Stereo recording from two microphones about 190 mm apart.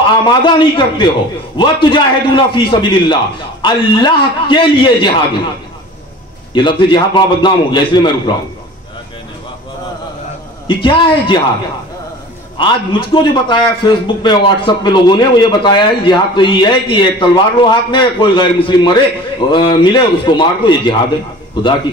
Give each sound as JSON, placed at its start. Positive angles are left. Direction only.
{"t": 0.2, "sound": "a man's voice", "side_deg": 25}
{"t": 6.5, "sound": "a man's voice", "side_deg": 25}
{"t": 10.8, "sound": "a man's voice", "side_deg": 25}
{"t": 12.5, "sound": "a man's voice", "side_deg": 25}